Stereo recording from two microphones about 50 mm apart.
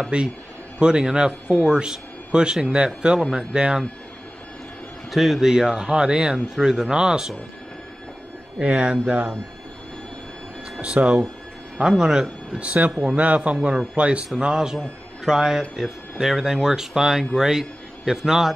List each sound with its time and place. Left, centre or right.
0.1 s a man's voice: right
5.1 s speech: centre
5.5 s speech: centre
8.5 s a man's voice: right
10.8 s a man's voice: right
12.0 s speech: centre
12.5 s a man's voice: right; by 18.5 s centre